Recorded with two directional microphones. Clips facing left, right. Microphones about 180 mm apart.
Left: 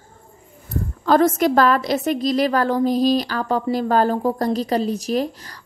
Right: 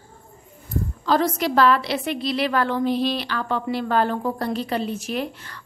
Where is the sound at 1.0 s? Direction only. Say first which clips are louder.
Left 6 dB; 50° left (ahead or behind).